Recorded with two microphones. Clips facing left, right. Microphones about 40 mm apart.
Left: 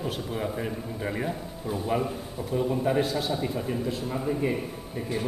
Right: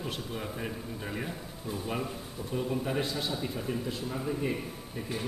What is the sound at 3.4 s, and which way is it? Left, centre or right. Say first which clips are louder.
A man's voice: left 5 dB; centre.